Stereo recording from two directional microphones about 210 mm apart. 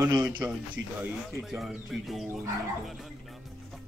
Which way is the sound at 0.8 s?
60° right (ahead or behind).